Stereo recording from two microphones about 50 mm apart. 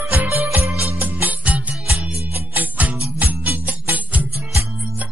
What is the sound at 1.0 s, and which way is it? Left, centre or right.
Music, right.